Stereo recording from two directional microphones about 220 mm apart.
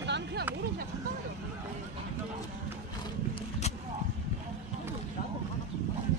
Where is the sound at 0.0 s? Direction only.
50° right (ahead or behind).